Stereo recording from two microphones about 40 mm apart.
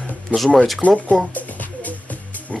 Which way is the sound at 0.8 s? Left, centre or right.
Left.